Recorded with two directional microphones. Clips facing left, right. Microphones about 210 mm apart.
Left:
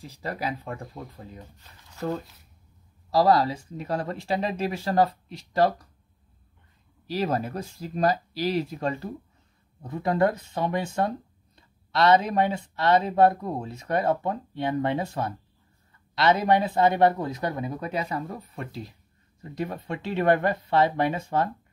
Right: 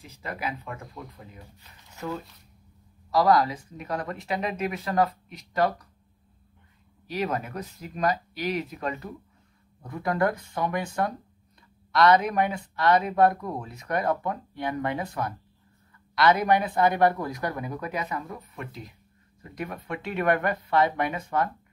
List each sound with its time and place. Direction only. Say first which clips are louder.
0.0 s speech: left 3 dB; 35° left (ahead or behind)
3.1 s speech: left 1 dB; 30° left (ahead or behind)
7.1 s speech: left 3 dB; 30° left (ahead or behind)